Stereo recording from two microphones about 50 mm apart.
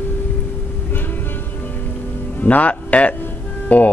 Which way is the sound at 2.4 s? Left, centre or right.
Left.